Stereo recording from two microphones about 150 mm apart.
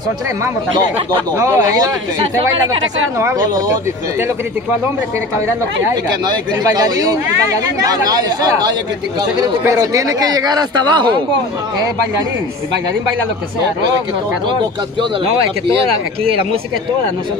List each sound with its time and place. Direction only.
1.4 s speech: 20° right (ahead or behind)
3.2 s speech: 20° right (ahead or behind)
6.2 s speech: 25° right (ahead or behind)